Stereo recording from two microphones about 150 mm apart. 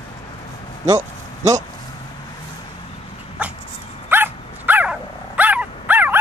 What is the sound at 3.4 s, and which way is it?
Dog, 10° right (ahead or behind).